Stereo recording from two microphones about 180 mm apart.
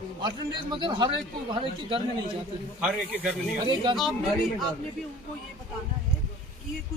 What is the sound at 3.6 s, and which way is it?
Speech, 25° right (ahead or behind).